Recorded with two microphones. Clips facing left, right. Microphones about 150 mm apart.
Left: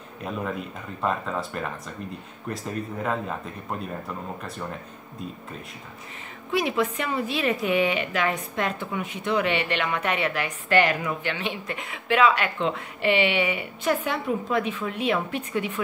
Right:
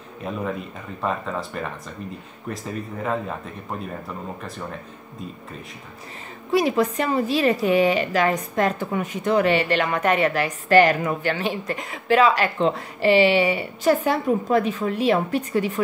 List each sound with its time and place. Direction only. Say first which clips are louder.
0.2 s speech: right 2 dB; centre (ahead or behind)
6.5 s a woman's voice: right 5 dB; 40° right (ahead or behind)